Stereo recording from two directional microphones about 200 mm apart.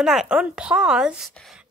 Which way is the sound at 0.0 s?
Centre (ahead or behind).